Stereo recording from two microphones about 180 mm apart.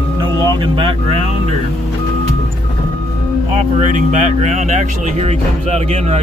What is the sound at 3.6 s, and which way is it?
Speech, 40° right (ahead or behind).